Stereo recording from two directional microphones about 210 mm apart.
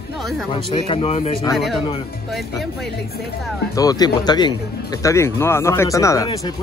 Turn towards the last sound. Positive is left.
turn(degrees=15)  # may be behind; listen again after turning